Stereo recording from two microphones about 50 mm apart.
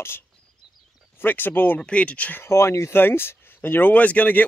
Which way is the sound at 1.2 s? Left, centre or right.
Left.